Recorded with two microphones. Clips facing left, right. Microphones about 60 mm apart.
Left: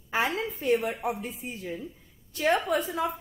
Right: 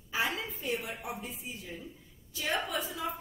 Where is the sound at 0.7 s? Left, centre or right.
Left.